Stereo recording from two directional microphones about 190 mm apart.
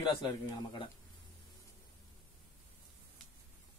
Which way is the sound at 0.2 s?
20° left (ahead or behind).